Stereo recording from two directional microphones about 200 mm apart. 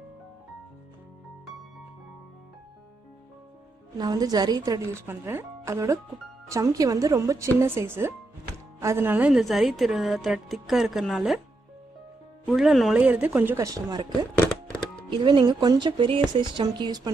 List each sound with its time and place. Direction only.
4.0 s a woman's voice: 20° right (ahead or behind); by 11.4 s centre (ahead or behind)
12.4 s speech: centre (ahead or behind); by 17.1 s 20° right (ahead or behind)